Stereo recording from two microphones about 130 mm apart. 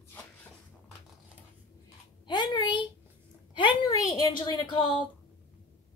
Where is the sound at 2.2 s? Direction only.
35° left (ahead or behind).